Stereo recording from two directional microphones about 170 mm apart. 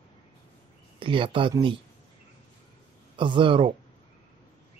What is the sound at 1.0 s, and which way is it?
Speech, 30° right (ahead or behind).